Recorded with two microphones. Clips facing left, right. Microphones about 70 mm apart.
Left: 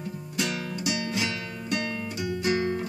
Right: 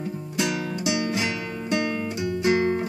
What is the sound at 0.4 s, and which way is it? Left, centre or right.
Music, right.